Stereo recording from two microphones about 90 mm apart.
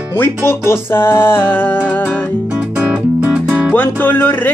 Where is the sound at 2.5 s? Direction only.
15° right (ahead or behind).